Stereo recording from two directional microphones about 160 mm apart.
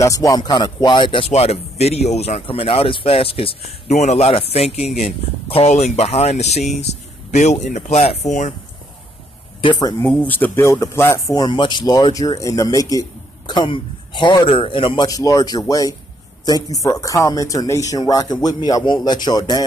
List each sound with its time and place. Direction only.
0.0 s speech: 20° left (ahead or behind); by 8.5 s 50° left (ahead or behind)
9.6 s speech: 30° left (ahead or behind)
10.0 s speech: 10° left (ahead or behind); by 15.0 s 30° left (ahead or behind)
15.0 s speech: 20° left (ahead or behind)